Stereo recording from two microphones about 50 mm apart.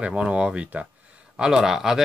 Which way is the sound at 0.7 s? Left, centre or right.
Right.